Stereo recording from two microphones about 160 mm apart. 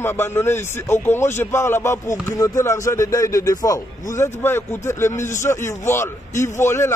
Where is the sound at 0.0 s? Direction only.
15° left (ahead or behind).